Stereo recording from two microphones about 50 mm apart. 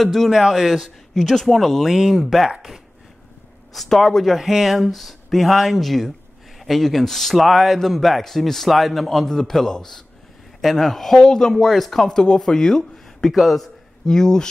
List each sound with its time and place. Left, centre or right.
0.0 s a man's voice: centre
3.7 s a man's voice: centre
14.0 s speech: centre